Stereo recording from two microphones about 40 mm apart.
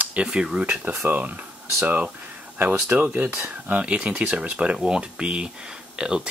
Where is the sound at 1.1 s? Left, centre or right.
Right.